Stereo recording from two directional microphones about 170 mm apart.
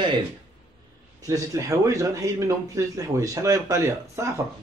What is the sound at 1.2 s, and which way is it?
Speech, 20° right (ahead or behind).